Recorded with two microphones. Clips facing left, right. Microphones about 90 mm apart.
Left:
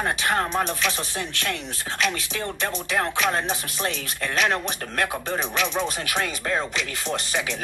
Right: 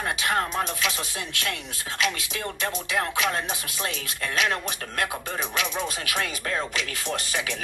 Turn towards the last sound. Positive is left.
turn(degrees=35)  # may be behind; listen again after turning